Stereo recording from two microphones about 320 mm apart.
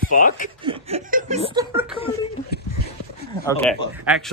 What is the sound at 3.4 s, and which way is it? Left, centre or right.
Speech, centre.